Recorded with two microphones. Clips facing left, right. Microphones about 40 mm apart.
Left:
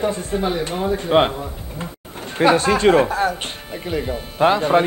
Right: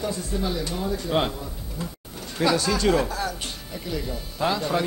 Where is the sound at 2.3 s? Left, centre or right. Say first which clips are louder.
Left 7 dB; left.